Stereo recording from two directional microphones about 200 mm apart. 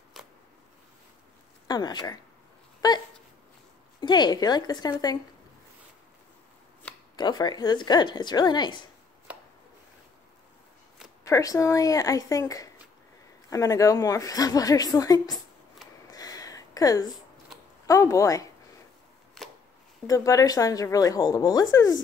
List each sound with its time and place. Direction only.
0.2 s a sound: centre (ahead or behind)
1.7 s speech: 20° left (ahead or behind)
4.0 s speech: 20° left (ahead or behind)
7.2 s speech: 20° left (ahead or behind)
9.3 s chopping: 5° right (ahead or behind)
11.2 s a woman's voice: 15° left (ahead or behind)
16.1 s a sound: 20° left (ahead or behind)
17.8 s a woman's voice: 15° left (ahead or behind)
19.4 s a sound: centre (ahead or behind)
20.1 s a woman's voice: 15° left (ahead or behind)